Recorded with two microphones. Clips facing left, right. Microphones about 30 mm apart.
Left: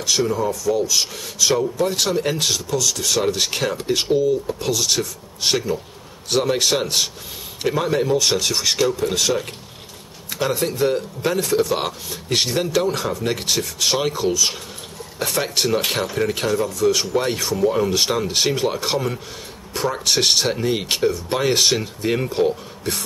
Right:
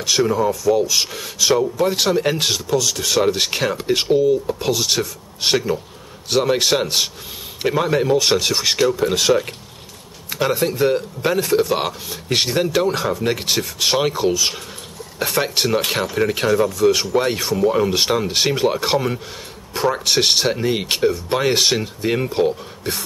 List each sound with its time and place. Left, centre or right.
0.0 s speech: centre